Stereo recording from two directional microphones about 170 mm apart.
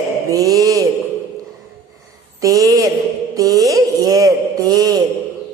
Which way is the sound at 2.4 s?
20° right (ahead or behind).